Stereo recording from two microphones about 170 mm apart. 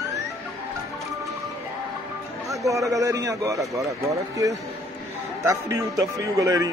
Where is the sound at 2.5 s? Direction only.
20° right (ahead or behind).